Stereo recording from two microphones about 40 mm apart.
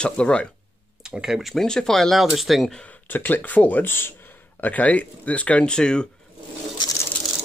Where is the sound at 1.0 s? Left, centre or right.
Centre.